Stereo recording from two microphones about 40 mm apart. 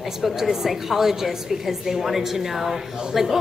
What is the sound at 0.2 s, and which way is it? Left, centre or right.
A woman's voice, centre.